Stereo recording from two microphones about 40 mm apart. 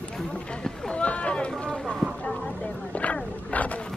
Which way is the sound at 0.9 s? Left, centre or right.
Left.